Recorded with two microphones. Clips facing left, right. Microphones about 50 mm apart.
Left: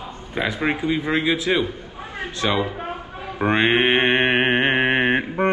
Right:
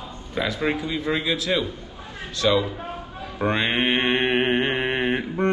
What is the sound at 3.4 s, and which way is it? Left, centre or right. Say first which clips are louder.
Mantra: left 4 dB; left.